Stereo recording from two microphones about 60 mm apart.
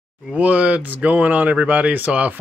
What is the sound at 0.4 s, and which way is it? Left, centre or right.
Speech, right.